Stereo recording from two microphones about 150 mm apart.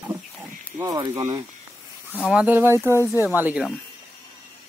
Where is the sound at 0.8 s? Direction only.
30° right (ahead or behind).